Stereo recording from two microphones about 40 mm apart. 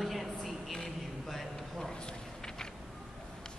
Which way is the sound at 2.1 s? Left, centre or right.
Centre.